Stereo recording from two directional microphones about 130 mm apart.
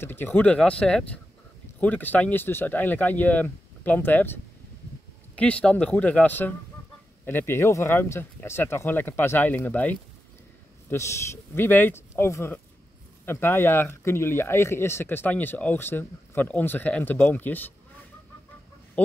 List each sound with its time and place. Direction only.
0.0 s speech: 15° left (ahead or behind)
19.0 s speech: 10° left (ahead or behind)